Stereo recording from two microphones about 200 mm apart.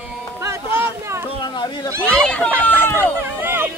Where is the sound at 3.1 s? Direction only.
10° right (ahead or behind).